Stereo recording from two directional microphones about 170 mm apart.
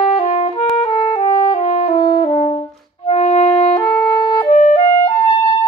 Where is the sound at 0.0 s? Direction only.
35° left (ahead or behind).